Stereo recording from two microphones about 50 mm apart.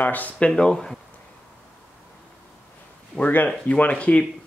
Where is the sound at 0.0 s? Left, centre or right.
Left.